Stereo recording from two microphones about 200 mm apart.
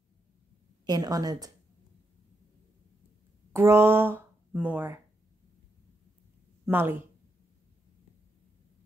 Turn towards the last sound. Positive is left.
turn(degrees=-10)  # may be behind; listen again after turning